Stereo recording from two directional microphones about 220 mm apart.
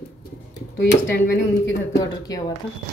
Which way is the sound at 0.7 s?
45° left (ahead or behind).